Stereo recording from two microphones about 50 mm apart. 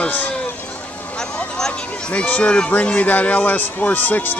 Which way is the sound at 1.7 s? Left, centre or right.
Left.